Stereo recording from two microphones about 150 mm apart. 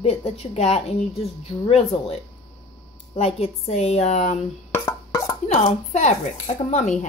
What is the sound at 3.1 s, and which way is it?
Speech, 40° left (ahead or behind).